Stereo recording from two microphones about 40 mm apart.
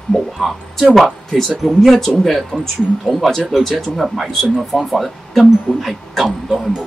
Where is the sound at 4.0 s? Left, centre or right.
Centre.